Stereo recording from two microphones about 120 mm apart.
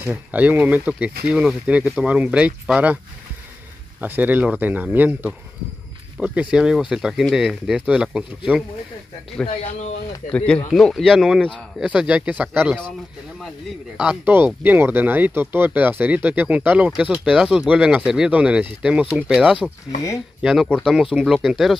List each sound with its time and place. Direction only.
0.0 s speech: 15° right (ahead or behind)
4.0 s speech: 15° right (ahead or behind)
9.5 s speech: 65° left (ahead or behind)
10.3 s speech: 10° left (ahead or behind); by 12.4 s 10° right (ahead or behind)
13.9 s speech: 10° right (ahead or behind)
20.4 s speech: 5° left (ahead or behind)